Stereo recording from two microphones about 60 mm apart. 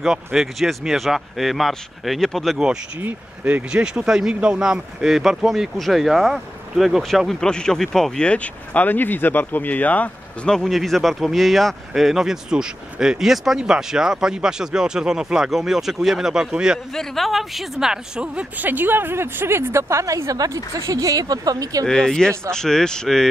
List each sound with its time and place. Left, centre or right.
0.0 s speech: centre
3.7 s speech: centre
8.2 s speech: left
10.4 s speech: centre
16.9 s speech: centre
18.7 s speech: right
21.8 s speech: centre